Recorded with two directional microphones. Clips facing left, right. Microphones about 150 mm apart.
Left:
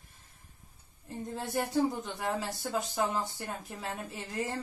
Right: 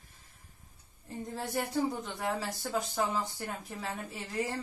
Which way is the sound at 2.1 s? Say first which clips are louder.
Even; 20° left (ahead or behind).